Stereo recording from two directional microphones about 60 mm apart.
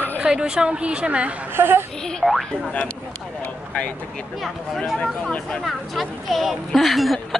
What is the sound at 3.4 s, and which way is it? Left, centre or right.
Vehicle, left.